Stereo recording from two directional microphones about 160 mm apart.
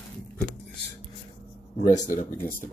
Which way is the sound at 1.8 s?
50° left (ahead or behind).